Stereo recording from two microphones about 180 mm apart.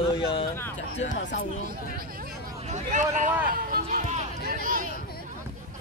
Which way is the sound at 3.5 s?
50° right (ahead or behind).